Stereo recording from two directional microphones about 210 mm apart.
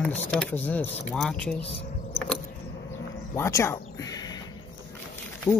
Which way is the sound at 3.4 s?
15° left (ahead or behind).